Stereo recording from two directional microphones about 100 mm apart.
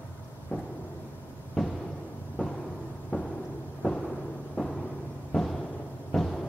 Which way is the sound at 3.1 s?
10° left (ahead or behind).